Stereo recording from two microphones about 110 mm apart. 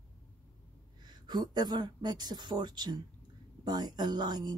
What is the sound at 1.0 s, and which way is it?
Speech, 40° right (ahead or behind).